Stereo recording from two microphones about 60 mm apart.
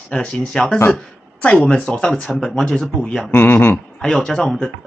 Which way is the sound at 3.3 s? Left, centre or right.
Left.